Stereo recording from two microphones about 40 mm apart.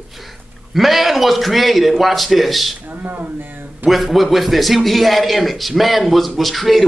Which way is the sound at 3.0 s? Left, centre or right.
Right.